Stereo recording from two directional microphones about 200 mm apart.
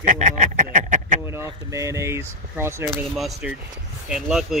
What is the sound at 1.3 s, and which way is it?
Speech, 15° right (ahead or behind).